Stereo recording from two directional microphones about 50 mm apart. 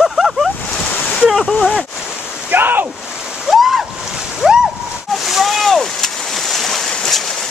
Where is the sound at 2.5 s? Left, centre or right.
Right.